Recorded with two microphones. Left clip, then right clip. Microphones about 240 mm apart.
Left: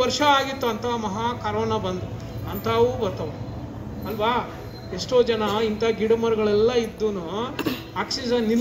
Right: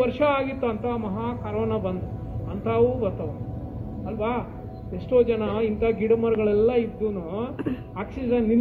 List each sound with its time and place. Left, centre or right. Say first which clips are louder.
0.2 s speech: left 3 dB; left
4.2 s speech: left 5 dB; left